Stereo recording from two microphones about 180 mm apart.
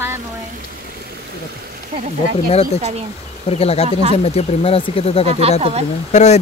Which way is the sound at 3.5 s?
35° left (ahead or behind).